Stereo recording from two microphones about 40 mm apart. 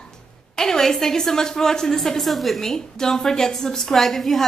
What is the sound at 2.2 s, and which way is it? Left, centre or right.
Speech, centre.